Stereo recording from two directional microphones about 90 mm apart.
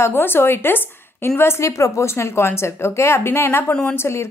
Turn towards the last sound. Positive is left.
turn(degrees=30)  # may be behind; listen again after turning